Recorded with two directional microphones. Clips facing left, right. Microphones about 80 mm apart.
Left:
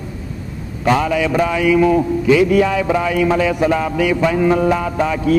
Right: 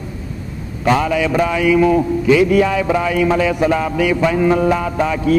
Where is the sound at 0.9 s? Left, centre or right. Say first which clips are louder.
Even; centre.